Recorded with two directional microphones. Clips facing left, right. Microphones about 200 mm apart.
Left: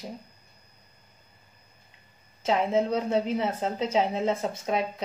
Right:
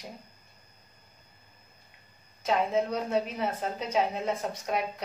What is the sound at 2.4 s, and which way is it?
A woman's voice, 25° left (ahead or behind).